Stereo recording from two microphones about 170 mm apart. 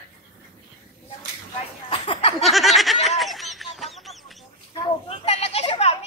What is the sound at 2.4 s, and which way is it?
Snicker, centre (ahead or behind).